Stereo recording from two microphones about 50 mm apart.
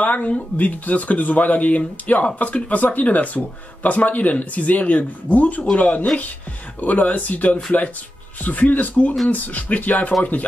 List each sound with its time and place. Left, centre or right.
0.0 s speech: left